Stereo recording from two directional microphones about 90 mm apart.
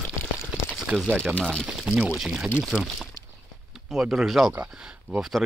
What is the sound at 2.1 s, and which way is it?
Speech, 5° right (ahead or behind).